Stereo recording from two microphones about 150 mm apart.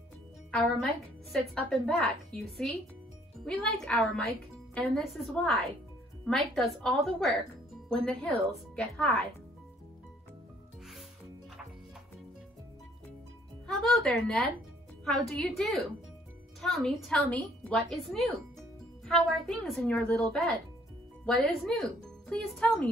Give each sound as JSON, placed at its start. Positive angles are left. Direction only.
{"t": 0.5, "sound": "a woman's voice", "side_deg": 5}
{"t": 13.7, "sound": "a woman's voice", "side_deg": 5}